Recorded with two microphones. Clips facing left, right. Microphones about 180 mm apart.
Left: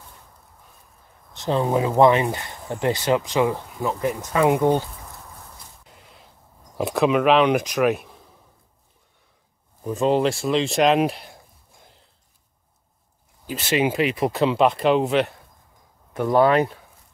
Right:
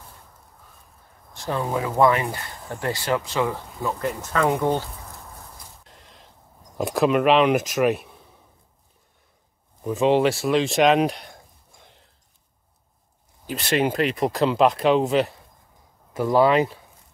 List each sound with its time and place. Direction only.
1.3 s speech: 20° left (ahead or behind)
5.9 s a sound: 5° left (ahead or behind)
6.8 s speech: centre (ahead or behind)
9.8 s speech: centre (ahead or behind)
13.5 s speech: 5° left (ahead or behind)
16.3 s speech: centre (ahead or behind)